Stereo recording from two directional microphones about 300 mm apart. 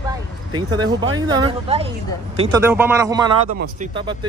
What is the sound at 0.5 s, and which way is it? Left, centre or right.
Speech, centre.